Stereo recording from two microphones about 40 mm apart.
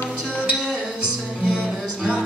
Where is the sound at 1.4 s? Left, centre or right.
Right.